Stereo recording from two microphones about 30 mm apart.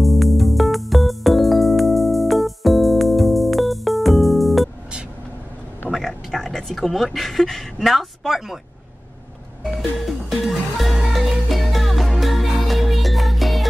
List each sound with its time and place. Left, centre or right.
0.0 s music: centre
6.0 s a sound: centre
6.9 s speech: centre
9.8 s music: centre